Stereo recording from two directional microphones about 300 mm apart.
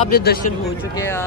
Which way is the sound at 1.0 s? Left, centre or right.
Centre.